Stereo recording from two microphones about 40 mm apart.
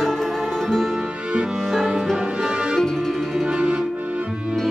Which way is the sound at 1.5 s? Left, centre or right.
Centre.